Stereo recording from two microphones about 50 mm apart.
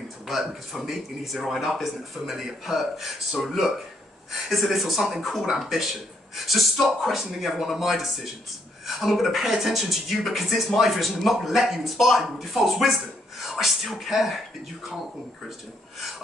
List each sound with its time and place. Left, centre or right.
0.3 s speech: centre